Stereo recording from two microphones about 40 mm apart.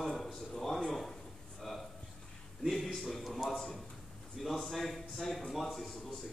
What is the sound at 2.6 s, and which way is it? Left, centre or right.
Speech, centre.